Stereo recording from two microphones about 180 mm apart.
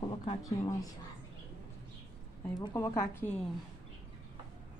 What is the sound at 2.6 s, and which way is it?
Speech, 25° left (ahead or behind).